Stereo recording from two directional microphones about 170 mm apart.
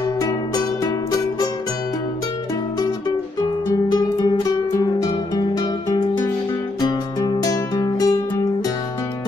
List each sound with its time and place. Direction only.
3.9 s music: 25° left (ahead or behind)